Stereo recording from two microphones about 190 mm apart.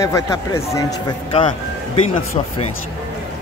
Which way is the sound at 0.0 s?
15° left (ahead or behind).